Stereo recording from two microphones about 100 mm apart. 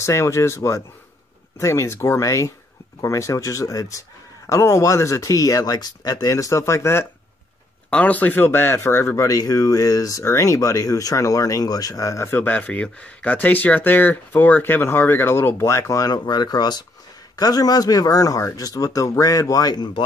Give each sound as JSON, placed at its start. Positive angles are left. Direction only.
{"t": 0.0, "sound": "speech", "side_deg": 30}
{"t": 7.9, "sound": "speech", "side_deg": 15}
{"t": 12.4, "sound": "speech", "side_deg": 15}